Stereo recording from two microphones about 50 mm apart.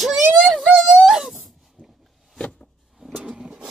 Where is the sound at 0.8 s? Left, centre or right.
Centre.